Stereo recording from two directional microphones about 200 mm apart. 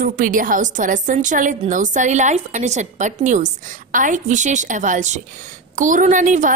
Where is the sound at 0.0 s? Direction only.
40° right (ahead or behind).